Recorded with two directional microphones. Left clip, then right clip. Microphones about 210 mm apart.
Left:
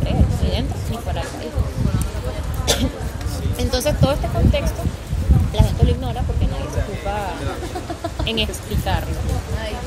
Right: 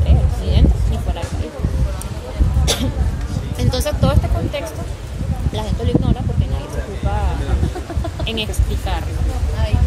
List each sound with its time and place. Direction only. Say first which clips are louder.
2.6 s cough: left 1 dB; 15° right (ahead or behind)
3.5 s speech: left 1 dB; 10° right (ahead or behind)
8.3 s speech: left 1 dB; 15° right (ahead or behind)